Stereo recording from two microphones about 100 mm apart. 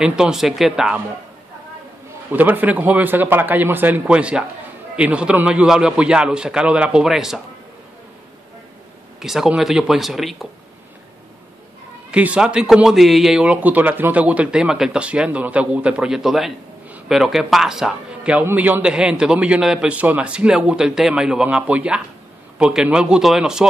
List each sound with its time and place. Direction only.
0.0 s speech: 5° right (ahead or behind)
2.3 s a man's voice: 20° right (ahead or behind)
9.2 s speech: 5° right (ahead or behind)
12.1 s a man's voice: 10° right (ahead or behind)
18.4 s a man's voice: 20° right (ahead or behind)